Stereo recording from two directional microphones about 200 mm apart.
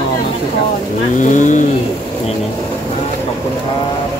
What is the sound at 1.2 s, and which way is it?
Speech, 40° left (ahead or behind).